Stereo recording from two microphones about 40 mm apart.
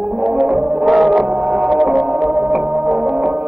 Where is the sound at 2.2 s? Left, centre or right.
Right.